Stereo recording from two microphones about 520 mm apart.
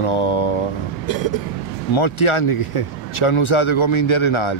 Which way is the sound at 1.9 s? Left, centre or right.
Left.